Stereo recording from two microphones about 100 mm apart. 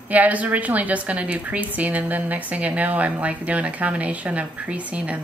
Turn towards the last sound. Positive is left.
turn(degrees=-15)  # may be behind; listen again after turning